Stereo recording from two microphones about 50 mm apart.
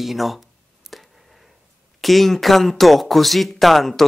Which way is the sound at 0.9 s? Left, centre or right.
Centre.